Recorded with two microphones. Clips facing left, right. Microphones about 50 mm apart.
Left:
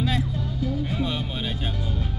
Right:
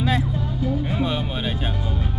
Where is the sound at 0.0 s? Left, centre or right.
Right.